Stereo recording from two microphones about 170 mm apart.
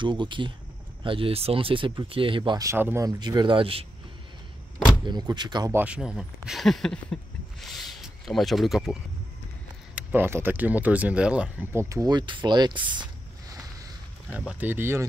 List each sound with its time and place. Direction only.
0.0 s speech: 30° right (ahead or behind)
5.0 s speech: 25° right (ahead or behind)
5.7 s speech: 10° right (ahead or behind)
9.9 s speech: 10° right (ahead or behind)
14.3 s speech: 5° right (ahead or behind)